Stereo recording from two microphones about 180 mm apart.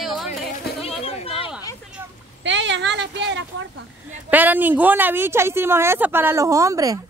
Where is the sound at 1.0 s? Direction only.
35° left (ahead or behind).